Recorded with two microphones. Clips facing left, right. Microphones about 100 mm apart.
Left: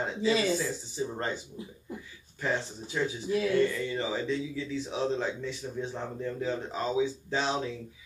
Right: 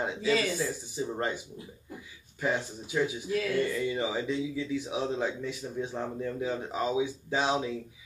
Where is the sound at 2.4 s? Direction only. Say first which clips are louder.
Right 1 dB; 10° right (ahead or behind).